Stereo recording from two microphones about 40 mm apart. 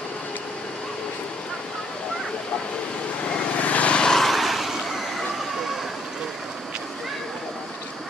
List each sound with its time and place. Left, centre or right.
3.3 s vehicle: left
4.0 s vehicle: centre
4.3 s vehicle: centre